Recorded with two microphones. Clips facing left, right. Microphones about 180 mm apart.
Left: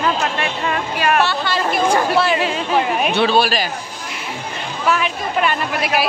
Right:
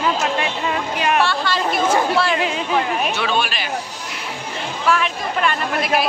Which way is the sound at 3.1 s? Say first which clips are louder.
Left 6 dB; 35° left (ahead or behind).